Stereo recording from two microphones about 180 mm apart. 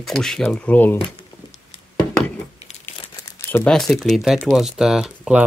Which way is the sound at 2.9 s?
15° left (ahead or behind).